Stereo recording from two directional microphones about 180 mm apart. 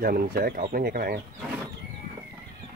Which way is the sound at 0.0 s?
55° right (ahead or behind).